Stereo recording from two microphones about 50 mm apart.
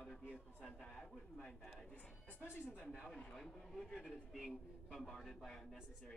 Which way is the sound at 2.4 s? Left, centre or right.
Left.